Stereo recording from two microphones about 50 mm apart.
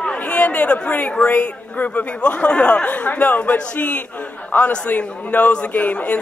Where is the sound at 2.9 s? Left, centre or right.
Left.